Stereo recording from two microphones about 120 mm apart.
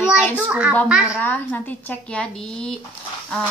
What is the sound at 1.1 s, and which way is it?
Speech, 15° left (ahead or behind).